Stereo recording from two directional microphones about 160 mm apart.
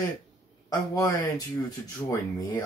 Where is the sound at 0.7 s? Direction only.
25° left (ahead or behind).